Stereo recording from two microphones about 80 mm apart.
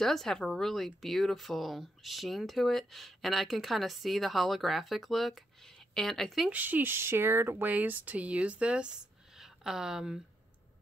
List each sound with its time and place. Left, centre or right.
0.0 s speech: centre
6.5 s speech: right; by 10.1 s centre